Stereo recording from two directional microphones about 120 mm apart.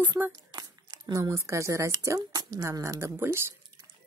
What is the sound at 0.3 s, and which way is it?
Speech, 30° right (ahead or behind).